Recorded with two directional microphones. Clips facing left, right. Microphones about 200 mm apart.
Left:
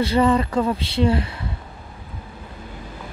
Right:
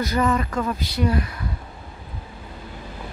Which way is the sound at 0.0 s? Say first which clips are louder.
Left 4 dB; 30° left (ahead or behind).